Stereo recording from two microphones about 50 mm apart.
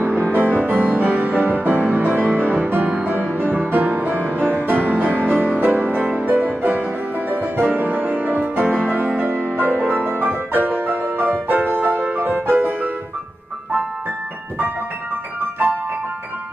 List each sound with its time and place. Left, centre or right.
0.0 s music: right
5.9 s music: right